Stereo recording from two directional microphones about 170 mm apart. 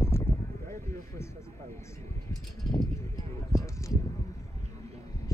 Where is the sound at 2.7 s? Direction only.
20° left (ahead or behind).